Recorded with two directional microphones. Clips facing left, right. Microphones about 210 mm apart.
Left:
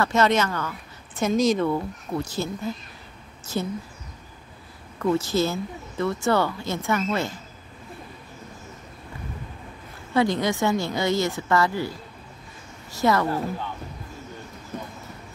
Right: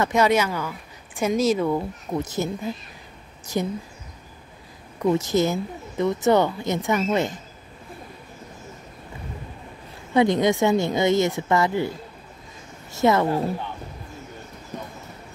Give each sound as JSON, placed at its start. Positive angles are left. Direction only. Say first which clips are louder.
{"t": 0.0, "sound": "speech", "louder": "right 1 dB", "side_deg": -15}
{"t": 1.8, "sound": "speech", "louder": "right 2 dB", "side_deg": -20}
{"t": 4.9, "sound": "speech", "louder": "right 2 dB", "side_deg": -20}
{"t": 10.1, "sound": "speech", "louder": "right 4 dB", "side_deg": -20}
{"t": 12.9, "sound": "speech", "louder": "right 3 dB", "side_deg": -20}